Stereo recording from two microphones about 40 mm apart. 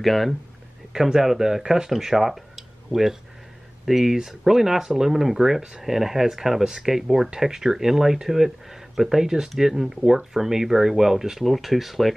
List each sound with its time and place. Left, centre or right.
0.0 s speech: centre
0.9 s speech: centre
11.4 s speech: centre